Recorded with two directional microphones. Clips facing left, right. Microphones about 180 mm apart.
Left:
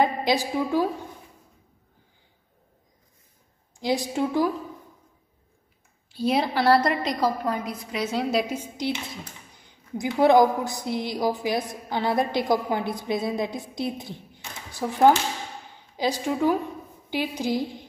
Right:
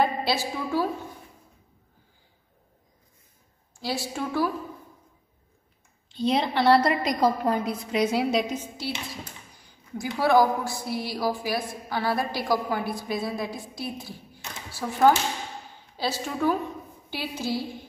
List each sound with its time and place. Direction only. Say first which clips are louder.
0.0 s a woman's voice: left 2 dB; 15° left (ahead or behind)
3.8 s a woman's voice: left 5 dB; 15° left (ahead or behind)
6.0 s a woman's voice: left 1 dB; 5° left (ahead or behind); by 7.2 s 10° right (ahead or behind)
7.4 s a woman's voice: right 3 dB; 30° right (ahead or behind)
8.0 s a woman's voice: right 3 dB; 10° right (ahead or behind)
8.3 s a woman's voice: even; 5° left (ahead or behind)